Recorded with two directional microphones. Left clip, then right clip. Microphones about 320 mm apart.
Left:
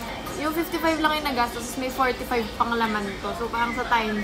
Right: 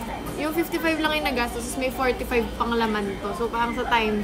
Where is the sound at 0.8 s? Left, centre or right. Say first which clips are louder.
Left 2 dB; centre.